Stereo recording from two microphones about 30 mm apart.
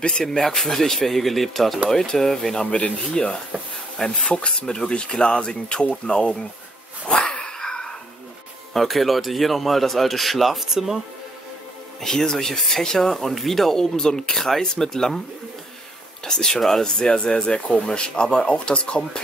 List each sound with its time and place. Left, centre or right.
0.2 s speech: centre; by 6.3 s left
7.1 s dog: left
7.5 s a sound: centre
8.7 s speech: centre
10.7 s speech: centre
12.0 s speech: centre
13.7 s speech: centre
16.3 s speech: left
16.8 s speech: left